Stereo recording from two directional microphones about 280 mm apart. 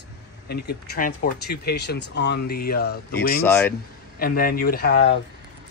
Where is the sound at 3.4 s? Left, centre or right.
Centre.